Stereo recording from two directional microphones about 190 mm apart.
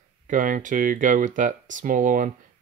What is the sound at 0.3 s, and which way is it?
Speech, 45° right (ahead or behind).